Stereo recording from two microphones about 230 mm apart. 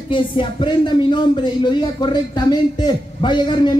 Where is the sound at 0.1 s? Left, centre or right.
Left.